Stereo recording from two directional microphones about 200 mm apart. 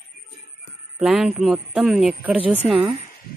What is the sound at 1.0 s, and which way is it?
Speech, centre (ahead or behind).